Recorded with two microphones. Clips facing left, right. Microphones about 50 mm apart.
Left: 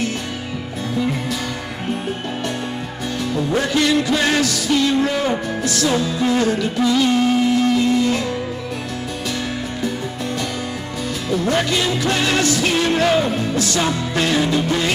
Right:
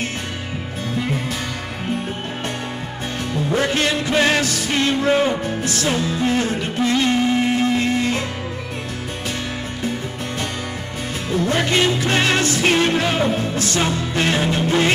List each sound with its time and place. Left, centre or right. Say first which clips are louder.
3.7 s music: left 2 dB; right
11.2 s music: left 1 dB; right